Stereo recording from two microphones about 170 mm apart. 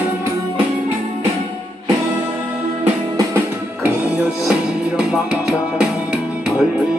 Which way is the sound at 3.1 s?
10° right (ahead or behind).